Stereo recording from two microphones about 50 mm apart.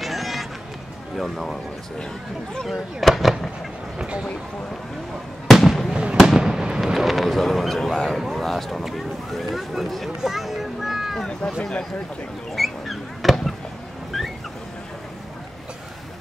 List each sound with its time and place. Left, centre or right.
0.0 s run: centre
1.1 s speech: centre
2.7 s speech: centre
5.5 s fireworks: centre
6.2 s fireworks: centre
8.2 s speech: centre
11.4 s speech: centre
12.5 s a sound: centre